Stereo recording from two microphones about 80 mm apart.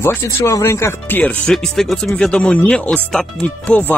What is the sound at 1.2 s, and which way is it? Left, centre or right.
Speech, centre.